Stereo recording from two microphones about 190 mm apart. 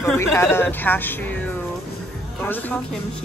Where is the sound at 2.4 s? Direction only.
10° left (ahead or behind).